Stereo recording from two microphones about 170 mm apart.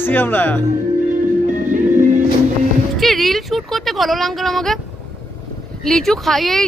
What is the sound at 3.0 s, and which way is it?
Speech, centre (ahead or behind).